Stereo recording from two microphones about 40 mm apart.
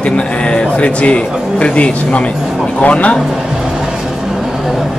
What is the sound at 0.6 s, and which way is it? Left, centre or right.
Speech, left.